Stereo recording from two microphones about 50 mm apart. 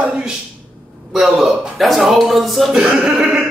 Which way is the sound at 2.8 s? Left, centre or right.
Centre.